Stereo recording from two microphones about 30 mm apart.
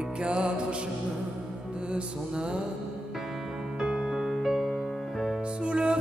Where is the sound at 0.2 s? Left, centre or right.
Right.